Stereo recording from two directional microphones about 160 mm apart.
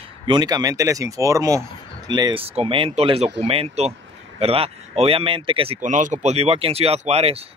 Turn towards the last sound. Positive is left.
turn(degrees=-40)  # may be behind; listen again after turning